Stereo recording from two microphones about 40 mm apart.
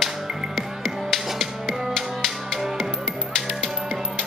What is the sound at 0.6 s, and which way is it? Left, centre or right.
Music, centre.